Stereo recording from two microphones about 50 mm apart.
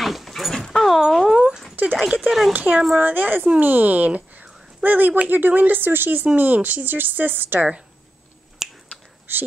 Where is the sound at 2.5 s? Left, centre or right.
Right.